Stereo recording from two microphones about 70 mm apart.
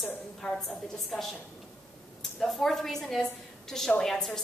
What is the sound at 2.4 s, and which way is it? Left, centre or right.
A woman's voice, centre.